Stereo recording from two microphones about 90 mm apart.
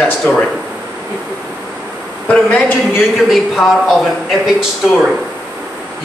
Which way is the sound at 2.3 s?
10° left (ahead or behind).